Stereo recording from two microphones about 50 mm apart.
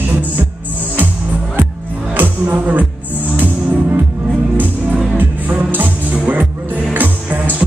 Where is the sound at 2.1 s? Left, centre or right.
Right.